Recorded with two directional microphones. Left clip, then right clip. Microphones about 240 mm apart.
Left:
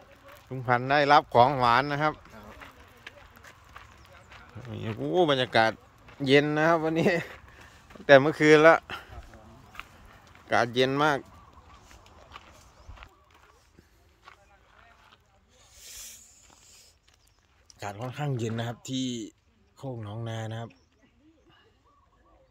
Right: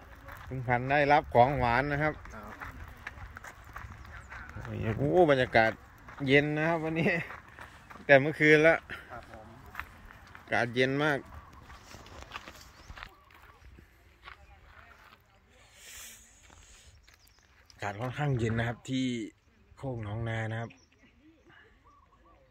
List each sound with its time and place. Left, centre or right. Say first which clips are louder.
0.5 s speech: left 4 dB; centre
3.0 s run: right 3 dB; centre
4.3 s speech: right 1 dB; centre
10.5 s speech: left 4 dB; centre
12.3 s horse: right 4 dB; centre
12.9 s a sound: right 5 dB; centre
15.9 s a sound: left 3 dB; centre
17.6 s a man's voice: right 1 dB; centre